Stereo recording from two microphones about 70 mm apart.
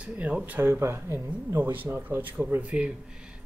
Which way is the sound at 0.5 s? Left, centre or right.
Right.